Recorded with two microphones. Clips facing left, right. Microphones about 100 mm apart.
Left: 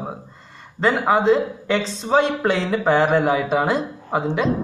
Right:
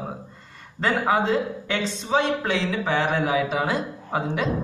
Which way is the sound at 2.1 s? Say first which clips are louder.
Left 5 dB; 45° left (ahead or behind).